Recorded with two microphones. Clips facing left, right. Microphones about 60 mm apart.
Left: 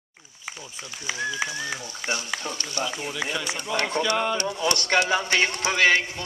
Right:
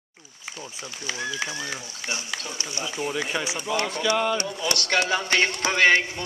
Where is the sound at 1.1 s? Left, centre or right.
Centre.